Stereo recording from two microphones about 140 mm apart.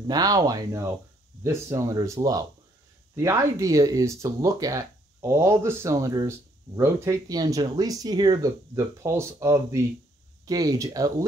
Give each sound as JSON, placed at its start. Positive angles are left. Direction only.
{"t": 0.0, "sound": "speech", "side_deg": -30}